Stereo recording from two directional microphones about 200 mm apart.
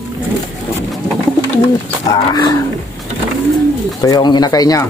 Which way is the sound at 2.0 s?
20° left (ahead or behind).